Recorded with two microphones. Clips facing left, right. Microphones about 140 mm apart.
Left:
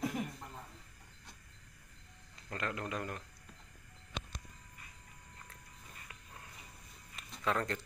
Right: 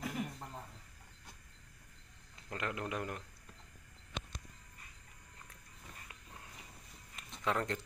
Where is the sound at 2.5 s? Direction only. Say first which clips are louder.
Even; 15° right (ahead or behind).